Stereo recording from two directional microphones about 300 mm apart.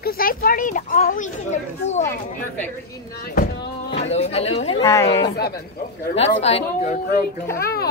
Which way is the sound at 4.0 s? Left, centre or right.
Left.